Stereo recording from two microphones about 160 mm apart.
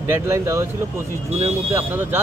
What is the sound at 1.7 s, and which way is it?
Speech, 15° right (ahead or behind).